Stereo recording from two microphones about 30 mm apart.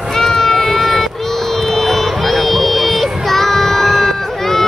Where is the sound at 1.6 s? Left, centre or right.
Centre.